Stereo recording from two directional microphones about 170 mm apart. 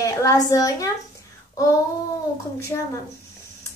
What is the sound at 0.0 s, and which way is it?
Speech, 20° left (ahead or behind).